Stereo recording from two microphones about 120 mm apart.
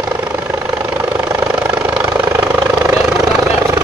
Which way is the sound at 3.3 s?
25° right (ahead or behind).